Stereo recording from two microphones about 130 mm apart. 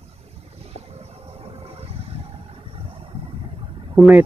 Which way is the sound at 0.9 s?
55° right (ahead or behind).